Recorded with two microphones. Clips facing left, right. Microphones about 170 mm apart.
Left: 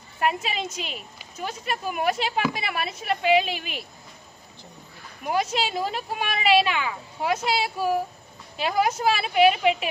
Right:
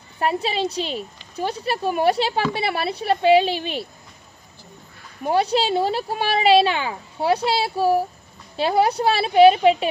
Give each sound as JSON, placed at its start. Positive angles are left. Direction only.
{"t": 0.2, "sound": "speech", "side_deg": -30}
{"t": 5.2, "sound": "speech", "side_deg": -35}